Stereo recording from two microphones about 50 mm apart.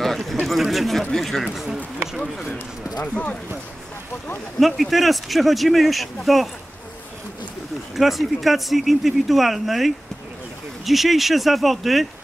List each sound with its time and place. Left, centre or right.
0.0 s speech: centre
2.5 s speech: left
4.6 s speech: centre
7.9 s speech: centre